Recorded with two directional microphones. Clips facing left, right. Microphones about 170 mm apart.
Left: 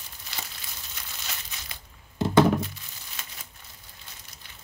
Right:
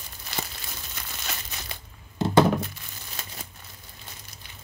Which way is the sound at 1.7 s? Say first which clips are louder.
Right 5 dB; 30° right (ahead or behind).